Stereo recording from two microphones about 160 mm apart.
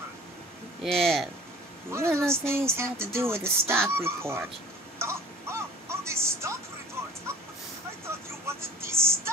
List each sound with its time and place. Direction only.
0.8 s speech: centre (ahead or behind)
1.9 s speech: 15° right (ahead or behind)
4.9 s wail: 15° right (ahead or behind)
8.5 s vehicle: 15° right (ahead or behind)